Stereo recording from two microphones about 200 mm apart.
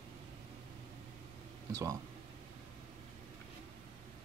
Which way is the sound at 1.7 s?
15° right (ahead or behind).